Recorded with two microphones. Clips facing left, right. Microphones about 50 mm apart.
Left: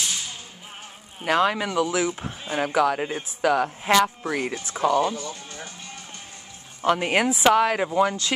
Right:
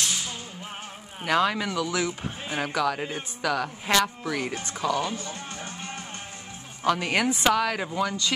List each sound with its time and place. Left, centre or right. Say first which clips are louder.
0.0 s music: even; centre
1.2 s speech: left 2 dB; centre
4.2 s speech: left 2 dB; left
5.1 s music: left 1 dB; right
6.9 s speech: left 3 dB; centre